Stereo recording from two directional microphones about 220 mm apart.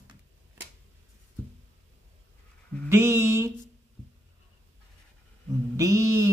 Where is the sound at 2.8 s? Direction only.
10° right (ahead or behind).